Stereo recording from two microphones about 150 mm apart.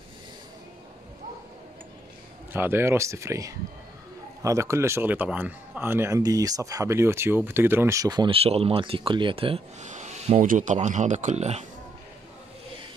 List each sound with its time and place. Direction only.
2.5 s speech: 15° right (ahead or behind)
8.4 s speech: 40° right (ahead or behind)
9.8 s a sound: 50° right (ahead or behind)
10.4 s speech: 60° right (ahead or behind)